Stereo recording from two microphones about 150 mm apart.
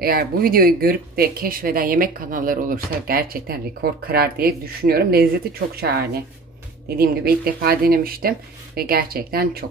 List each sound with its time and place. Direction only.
0.0 s speech: 90° right